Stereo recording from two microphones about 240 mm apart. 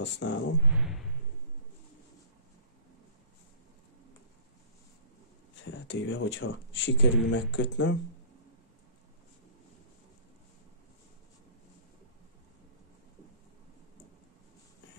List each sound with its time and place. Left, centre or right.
0.0 s speech: left
0.7 s a sound: centre
5.6 s speech: left